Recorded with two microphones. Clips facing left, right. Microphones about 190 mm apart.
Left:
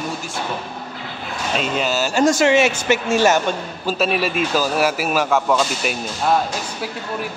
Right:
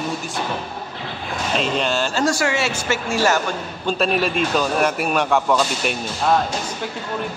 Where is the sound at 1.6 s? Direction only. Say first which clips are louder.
Even; 5° left (ahead or behind).